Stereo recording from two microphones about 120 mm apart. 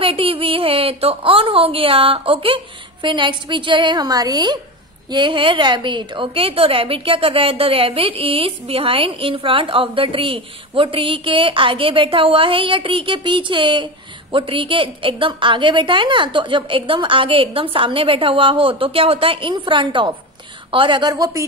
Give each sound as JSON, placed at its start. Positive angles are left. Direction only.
{"t": 0.0, "sound": "a woman's voice", "side_deg": -50}
{"t": 21.1, "sound": "speech", "side_deg": -30}